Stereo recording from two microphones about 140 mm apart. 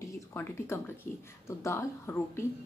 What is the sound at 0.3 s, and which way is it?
Speech, 20° left (ahead or behind).